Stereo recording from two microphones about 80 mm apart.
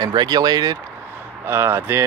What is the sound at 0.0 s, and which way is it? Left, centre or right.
Speech, right.